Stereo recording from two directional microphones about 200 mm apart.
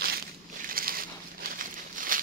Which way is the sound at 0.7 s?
45° right (ahead or behind).